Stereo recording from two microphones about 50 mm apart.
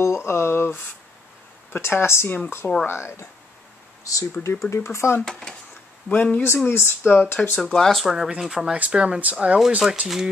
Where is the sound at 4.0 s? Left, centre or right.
Left.